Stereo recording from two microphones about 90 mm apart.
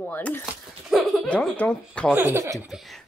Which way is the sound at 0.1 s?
20° left (ahead or behind).